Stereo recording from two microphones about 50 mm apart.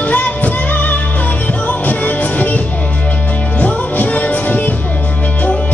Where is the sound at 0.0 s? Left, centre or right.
Left.